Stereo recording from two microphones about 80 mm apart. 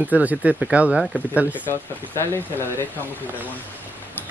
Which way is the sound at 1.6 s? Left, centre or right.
Left.